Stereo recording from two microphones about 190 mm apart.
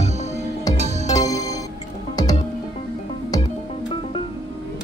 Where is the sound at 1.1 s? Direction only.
20° left (ahead or behind).